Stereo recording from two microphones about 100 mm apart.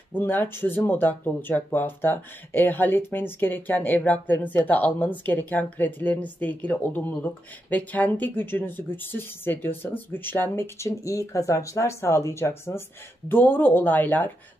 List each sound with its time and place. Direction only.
0.1 s speech: 20° left (ahead or behind)